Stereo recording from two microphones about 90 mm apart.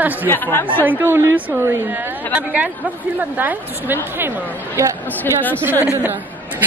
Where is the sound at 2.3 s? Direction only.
10° right (ahead or behind).